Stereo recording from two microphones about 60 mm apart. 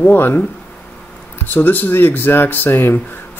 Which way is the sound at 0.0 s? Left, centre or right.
Left.